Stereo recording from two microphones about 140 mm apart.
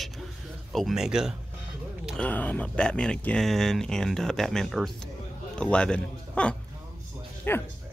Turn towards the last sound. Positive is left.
turn(degrees=15)  # may be behind; listen again after turning